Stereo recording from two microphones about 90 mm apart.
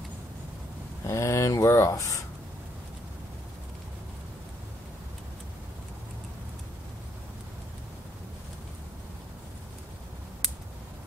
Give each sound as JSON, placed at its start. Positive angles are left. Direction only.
{"t": 1.0, "sound": "speech", "side_deg": 35}